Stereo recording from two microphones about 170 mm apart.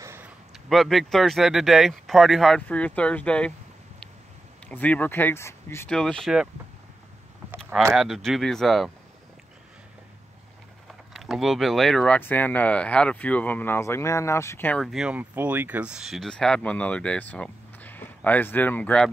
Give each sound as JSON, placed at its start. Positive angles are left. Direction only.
{"t": 0.0, "sound": "a sound", "side_deg": -15}
{"t": 0.7, "sound": "speech", "side_deg": 0}
{"t": 4.6, "sound": "speech", "side_deg": 10}
{"t": 5.9, "sound": "speech", "side_deg": 5}
{"t": 7.9, "sound": "speech", "side_deg": 0}
{"t": 10.9, "sound": "speech", "side_deg": 0}